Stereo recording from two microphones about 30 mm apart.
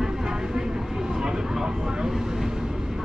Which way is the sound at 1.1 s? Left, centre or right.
Right.